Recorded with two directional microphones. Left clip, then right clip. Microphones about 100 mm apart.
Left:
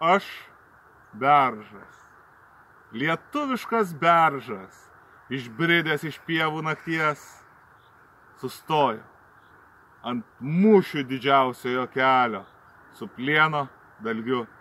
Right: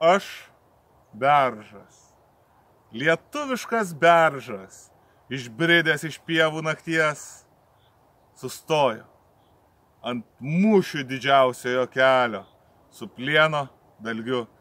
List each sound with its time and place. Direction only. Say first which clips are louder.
1.2 s speech: even; 20° right (ahead or behind)
3.3 s speech: even; 30° right (ahead or behind)
8.4 s speech: right 1 dB; 25° right (ahead or behind)
10.0 s a man's voice: right 1 dB; 20° right (ahead or behind)